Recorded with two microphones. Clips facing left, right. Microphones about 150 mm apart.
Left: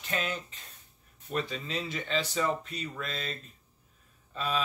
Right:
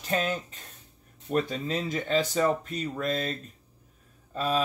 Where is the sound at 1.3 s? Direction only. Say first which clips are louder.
Right 6 dB; 45° right (ahead or behind).